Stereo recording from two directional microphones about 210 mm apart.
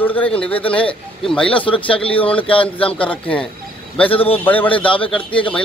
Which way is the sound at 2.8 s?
5° left (ahead or behind).